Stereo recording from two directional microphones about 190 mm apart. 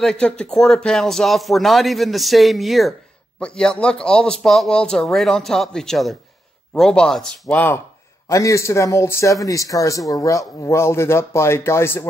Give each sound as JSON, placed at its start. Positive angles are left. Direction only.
{"t": 0.0, "sound": "speech", "side_deg": 5}